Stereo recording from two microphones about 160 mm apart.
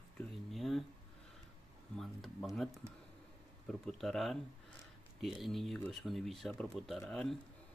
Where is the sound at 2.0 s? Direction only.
Centre (ahead or behind).